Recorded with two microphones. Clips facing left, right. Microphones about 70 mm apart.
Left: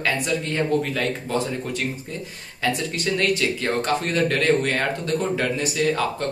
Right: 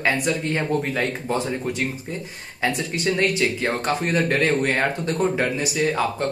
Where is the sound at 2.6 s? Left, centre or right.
Right.